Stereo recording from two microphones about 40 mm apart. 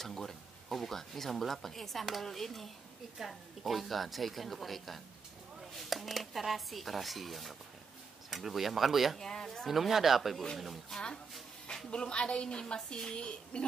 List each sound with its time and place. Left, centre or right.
0.0 s speech: centre
9.2 s speech: centre
9.7 s speech: centre
11.7 s a woman's voice: left